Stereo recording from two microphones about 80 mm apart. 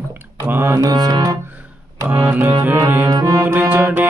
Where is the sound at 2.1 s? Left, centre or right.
Right.